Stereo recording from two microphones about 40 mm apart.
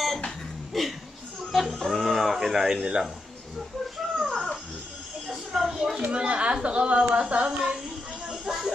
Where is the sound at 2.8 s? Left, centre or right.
Right.